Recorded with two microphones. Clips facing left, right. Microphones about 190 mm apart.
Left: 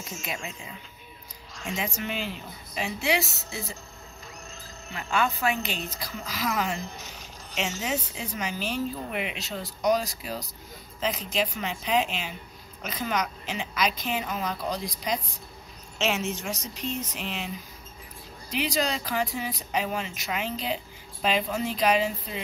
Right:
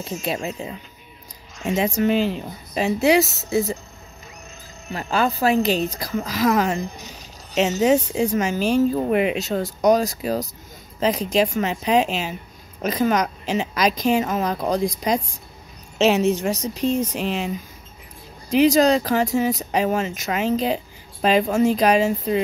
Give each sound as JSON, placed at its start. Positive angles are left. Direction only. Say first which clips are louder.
{"t": 0.0, "sound": "speech", "louder": "right 10 dB", "side_deg": -35}
{"t": 4.9, "sound": "speech", "louder": "right 6 dB", "side_deg": -35}
{"t": 16.0, "sound": "speech", "louder": "right 11 dB", "side_deg": -35}
{"t": 18.5, "sound": "speech", "louder": "right 13 dB", "side_deg": -45}